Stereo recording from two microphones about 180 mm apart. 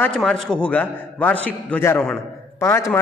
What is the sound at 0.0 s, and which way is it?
A man's voice, 5° left (ahead or behind).